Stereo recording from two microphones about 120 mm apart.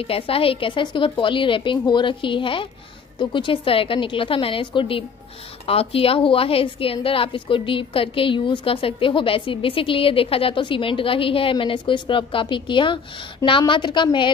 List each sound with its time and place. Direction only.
0.0 s a woman's voice: 50° left (ahead or behind)